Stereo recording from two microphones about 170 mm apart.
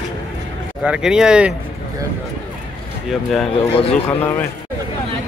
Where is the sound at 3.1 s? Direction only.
Centre (ahead or behind).